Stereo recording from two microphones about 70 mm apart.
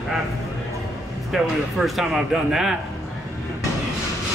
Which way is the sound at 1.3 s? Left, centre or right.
Centre.